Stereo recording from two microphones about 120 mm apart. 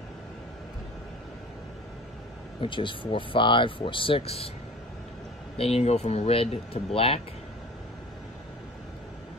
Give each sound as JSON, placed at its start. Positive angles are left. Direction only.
{"t": 2.6, "sound": "speech", "side_deg": 45}
{"t": 5.6, "sound": "speech", "side_deg": 60}